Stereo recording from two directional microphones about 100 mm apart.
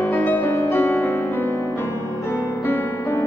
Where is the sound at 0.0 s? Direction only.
20° left (ahead or behind).